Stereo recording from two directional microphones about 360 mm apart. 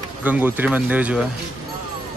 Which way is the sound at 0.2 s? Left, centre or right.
Centre.